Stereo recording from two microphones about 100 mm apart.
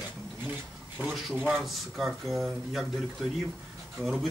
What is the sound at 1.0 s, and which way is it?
Speech, 15° right (ahead or behind).